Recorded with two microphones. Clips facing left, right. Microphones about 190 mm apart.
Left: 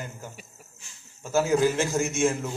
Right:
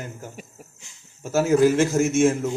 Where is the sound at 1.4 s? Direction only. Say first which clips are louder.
Right 5 dB; 45° right (ahead or behind).